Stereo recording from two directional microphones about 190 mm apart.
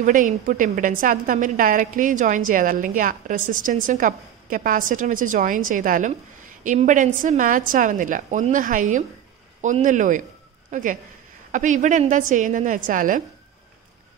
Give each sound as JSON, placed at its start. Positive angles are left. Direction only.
{"t": 0.0, "sound": "a woman's voice", "side_deg": -45}